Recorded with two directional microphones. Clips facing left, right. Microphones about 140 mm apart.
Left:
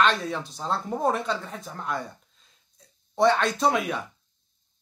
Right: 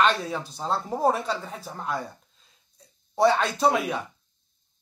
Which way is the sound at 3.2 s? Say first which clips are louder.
Even; centre (ahead or behind).